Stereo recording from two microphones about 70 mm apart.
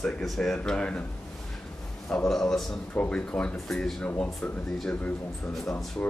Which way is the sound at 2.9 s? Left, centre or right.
Centre.